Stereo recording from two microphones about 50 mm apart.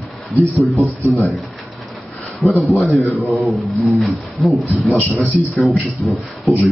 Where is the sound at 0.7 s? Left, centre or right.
Left.